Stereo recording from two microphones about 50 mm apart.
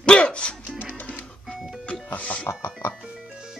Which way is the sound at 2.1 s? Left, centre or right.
Left.